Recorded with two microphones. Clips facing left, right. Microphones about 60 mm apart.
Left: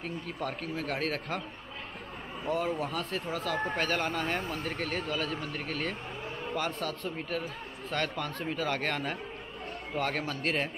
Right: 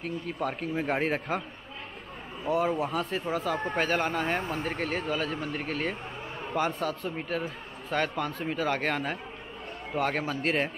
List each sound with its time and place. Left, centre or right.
0.0 s a man's voice: centre
2.4 s a man's voice: centre
3.5 s a man's voice: centre